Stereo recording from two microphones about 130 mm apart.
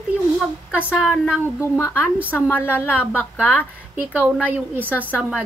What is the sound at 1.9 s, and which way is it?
Speech, 10° right (ahead or behind).